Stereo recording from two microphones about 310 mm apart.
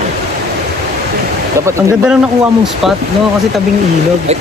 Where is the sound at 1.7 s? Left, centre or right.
Centre.